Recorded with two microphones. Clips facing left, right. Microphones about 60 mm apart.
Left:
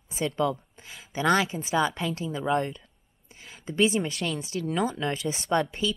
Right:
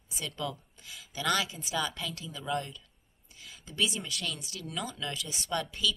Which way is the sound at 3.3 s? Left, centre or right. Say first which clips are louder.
Left 8 dB; left.